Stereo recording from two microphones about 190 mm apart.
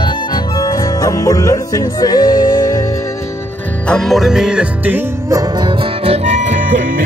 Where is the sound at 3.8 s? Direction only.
5° left (ahead or behind).